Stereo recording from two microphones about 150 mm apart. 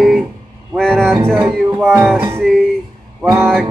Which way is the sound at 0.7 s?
5° left (ahead or behind).